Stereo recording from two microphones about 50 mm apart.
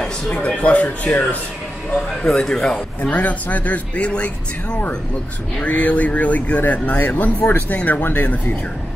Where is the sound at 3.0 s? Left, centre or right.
Left.